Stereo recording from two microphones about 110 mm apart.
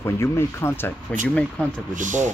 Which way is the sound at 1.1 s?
10° left (ahead or behind).